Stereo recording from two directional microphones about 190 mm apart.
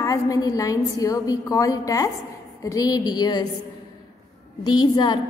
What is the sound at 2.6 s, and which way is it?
Speech, 20° left (ahead or behind).